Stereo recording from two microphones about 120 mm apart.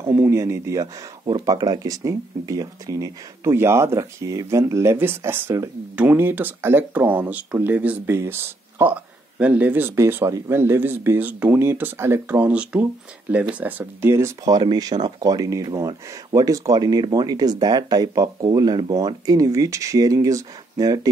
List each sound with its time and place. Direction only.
0.1 s speech: 20° right (ahead or behind)
14.4 s speech: 35° right (ahead or behind)